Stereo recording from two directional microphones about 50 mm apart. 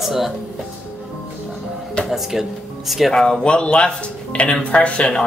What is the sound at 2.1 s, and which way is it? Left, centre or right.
Speech, centre.